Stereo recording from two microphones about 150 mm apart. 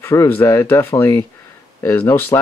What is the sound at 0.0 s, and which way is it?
Speech, 20° left (ahead or behind).